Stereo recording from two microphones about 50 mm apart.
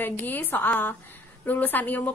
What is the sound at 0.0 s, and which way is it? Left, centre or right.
A woman's voice, left.